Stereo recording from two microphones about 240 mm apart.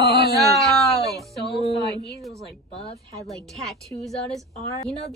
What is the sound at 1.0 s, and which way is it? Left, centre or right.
Speech, centre.